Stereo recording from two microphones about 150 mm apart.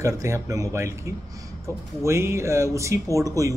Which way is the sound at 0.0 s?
20° right (ahead or behind).